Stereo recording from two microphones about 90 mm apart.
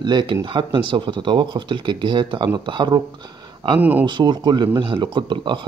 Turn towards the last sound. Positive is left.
turn(degrees=-60)  # may be behind; listen again after turning